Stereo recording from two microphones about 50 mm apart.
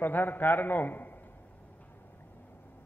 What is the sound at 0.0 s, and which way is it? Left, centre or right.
A man's voice, left.